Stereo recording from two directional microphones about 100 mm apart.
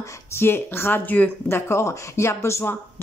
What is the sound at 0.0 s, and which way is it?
Speech, 30° left (ahead or behind).